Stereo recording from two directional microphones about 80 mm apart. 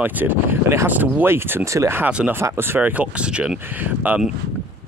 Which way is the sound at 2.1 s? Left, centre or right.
Centre.